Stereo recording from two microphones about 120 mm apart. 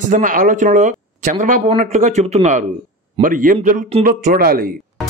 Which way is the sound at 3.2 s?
90° right.